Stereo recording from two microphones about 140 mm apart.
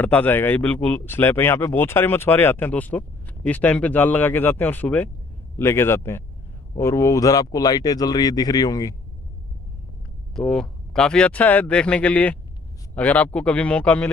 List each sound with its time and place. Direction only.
0.0 s speech: 10° left (ahead or behind)
10.3 s speech: 5° left (ahead or behind)